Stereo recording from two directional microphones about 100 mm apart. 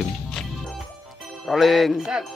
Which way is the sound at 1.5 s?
Centre (ahead or behind).